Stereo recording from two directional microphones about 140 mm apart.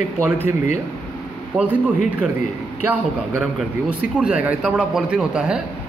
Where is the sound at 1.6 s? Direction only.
10° right (ahead or behind).